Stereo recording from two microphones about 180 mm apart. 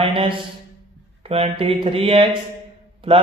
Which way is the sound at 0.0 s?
30° right (ahead or behind).